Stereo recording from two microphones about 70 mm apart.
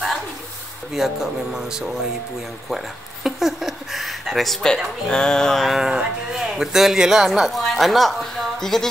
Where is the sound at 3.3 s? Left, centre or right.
Centre.